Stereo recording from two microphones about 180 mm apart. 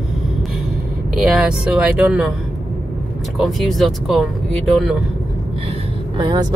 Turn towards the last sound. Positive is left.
turn(degrees=-25)  # may be behind; listen again after turning